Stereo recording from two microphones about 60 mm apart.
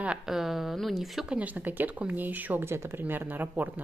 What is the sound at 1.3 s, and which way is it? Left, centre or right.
Speech, right.